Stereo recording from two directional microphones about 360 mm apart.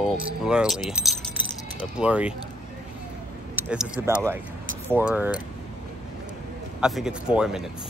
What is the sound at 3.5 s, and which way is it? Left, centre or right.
Speech, centre.